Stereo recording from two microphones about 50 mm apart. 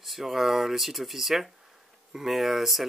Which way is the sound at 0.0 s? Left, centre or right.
Centre.